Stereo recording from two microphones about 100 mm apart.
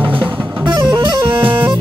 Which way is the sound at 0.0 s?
15° right (ahead or behind).